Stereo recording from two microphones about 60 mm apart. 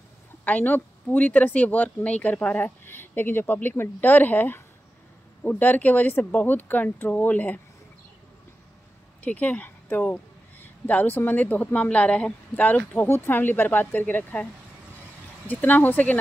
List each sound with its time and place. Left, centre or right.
0.5 s speech: left
2.8 s a sound: left
3.7 s speech: left
9.2 s speech: left